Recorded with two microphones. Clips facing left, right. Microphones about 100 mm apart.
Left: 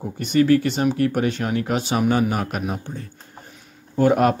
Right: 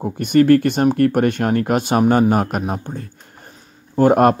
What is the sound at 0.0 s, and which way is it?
Speech, 55° right (ahead or behind).